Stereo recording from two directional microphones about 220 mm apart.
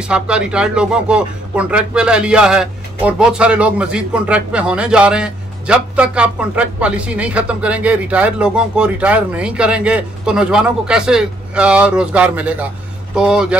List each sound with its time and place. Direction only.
0.0 s speech: 5° right (ahead or behind)